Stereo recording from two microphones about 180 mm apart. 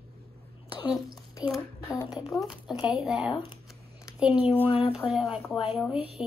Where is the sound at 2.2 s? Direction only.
Centre (ahead or behind).